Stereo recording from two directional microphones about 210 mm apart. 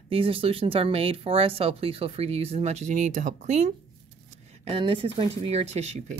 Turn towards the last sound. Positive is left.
turn(degrees=-30)  # may be behind; listen again after turning